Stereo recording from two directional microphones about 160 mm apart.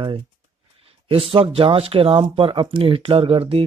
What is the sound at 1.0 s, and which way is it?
Speech, 35° right (ahead or behind).